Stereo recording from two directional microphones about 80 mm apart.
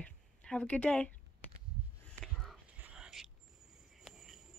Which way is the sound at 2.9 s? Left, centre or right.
Centre.